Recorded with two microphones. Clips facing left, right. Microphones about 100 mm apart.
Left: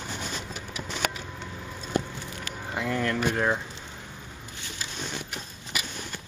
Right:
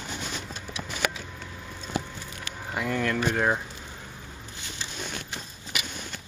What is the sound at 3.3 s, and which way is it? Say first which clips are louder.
Speech: right 1 dB; 15° right (ahead or behind).